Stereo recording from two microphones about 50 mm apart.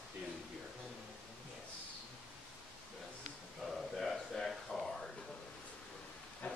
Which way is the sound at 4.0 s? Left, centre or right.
Centre.